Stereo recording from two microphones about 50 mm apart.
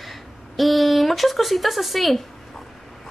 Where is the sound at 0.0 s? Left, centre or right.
Centre.